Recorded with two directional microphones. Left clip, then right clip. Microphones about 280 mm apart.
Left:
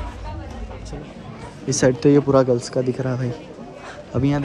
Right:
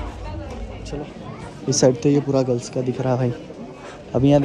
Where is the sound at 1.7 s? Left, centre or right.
Centre.